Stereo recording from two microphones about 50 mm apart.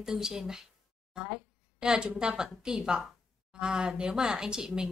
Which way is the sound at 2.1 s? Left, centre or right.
Centre.